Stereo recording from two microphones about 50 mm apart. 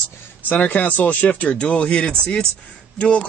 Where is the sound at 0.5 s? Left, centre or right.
Left.